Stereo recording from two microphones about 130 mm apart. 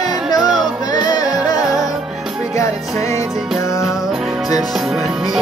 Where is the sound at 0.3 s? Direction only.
30° left (ahead or behind).